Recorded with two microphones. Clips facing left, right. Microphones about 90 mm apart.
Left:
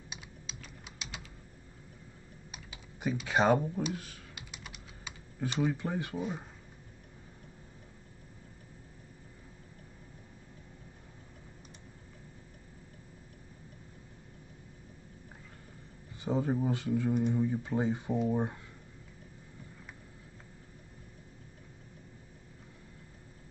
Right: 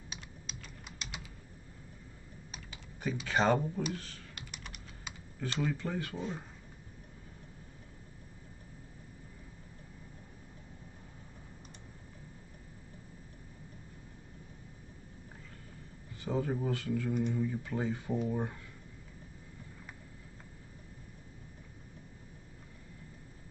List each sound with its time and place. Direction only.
0.5 s typing: centre (ahead or behind)
3.0 s speech: 15° left (ahead or behind)
3.9 s typing: 10° left (ahead or behind)
5.4 s speech: 15° left (ahead or behind)
16.3 s speech: 20° left (ahead or behind)